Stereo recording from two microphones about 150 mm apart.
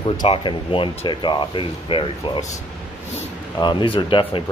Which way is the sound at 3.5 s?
35° left (ahead or behind).